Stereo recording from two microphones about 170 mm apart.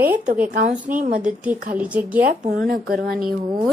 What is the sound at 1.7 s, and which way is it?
Speech, 10° right (ahead or behind).